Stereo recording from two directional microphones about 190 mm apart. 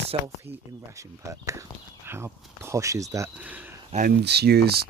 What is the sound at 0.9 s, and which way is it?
Speech, 15° right (ahead or behind).